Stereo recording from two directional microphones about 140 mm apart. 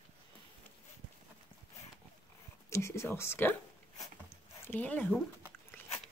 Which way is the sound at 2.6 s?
20° left (ahead or behind).